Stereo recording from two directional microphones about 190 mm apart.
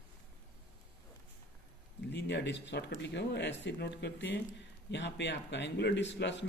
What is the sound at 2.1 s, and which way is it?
Speech, 65° left (ahead or behind).